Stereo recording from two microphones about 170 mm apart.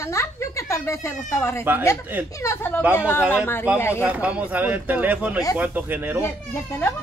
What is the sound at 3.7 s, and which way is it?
Speech, 15° left (ahead or behind).